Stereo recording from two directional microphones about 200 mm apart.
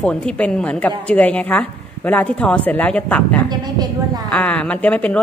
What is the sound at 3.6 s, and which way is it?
Speech, 20° right (ahead or behind).